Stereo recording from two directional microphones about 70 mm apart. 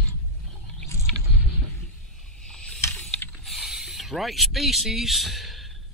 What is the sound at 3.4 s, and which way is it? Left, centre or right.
Mechanisms, centre.